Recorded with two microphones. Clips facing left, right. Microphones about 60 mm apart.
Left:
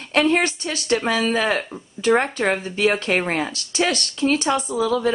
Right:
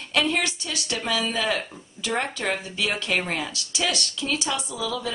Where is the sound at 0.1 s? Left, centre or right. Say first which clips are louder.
Left 6 dB; left.